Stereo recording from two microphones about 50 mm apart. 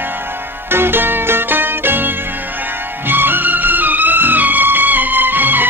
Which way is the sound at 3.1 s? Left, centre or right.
Right.